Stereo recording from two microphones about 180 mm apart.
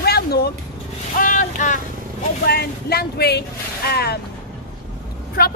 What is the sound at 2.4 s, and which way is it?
Speech, 60° left (ahead or behind).